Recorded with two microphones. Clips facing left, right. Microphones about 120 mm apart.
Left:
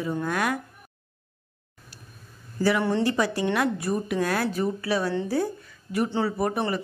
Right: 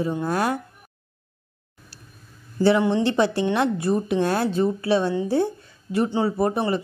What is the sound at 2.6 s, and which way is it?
A woman's voice, 25° right (ahead or behind).